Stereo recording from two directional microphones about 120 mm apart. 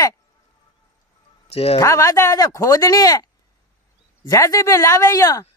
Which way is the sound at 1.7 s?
30° left (ahead or behind).